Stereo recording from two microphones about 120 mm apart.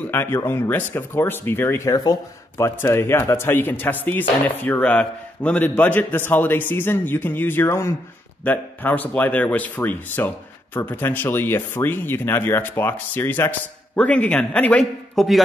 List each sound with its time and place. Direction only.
0.0 s a man's voice: 20° left (ahead or behind)
15.1 s a man's voice: centre (ahead or behind)